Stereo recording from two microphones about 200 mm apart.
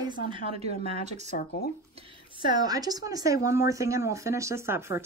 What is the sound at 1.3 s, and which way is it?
Speech, 50° left (ahead or behind).